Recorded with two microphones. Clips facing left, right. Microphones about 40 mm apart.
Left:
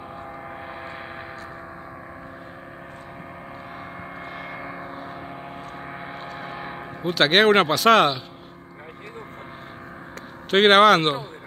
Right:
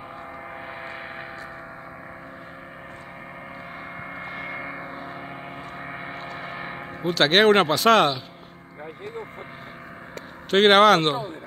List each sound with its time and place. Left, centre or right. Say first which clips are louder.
4.2 s gong: right 2 dB; centre
7.1 s speech: even; centre
10.5 s speech: left 1 dB; centre